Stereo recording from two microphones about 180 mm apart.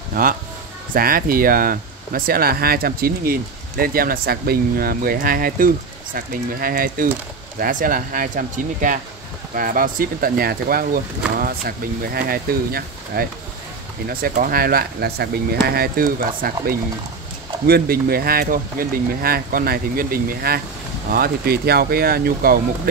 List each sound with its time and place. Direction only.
0.1 s speech: 50° right (ahead or behind)
17.6 s speech: 60° right (ahead or behind)